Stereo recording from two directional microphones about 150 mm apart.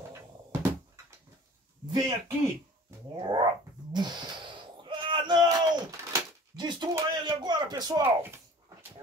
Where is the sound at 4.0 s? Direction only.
30° right (ahead or behind).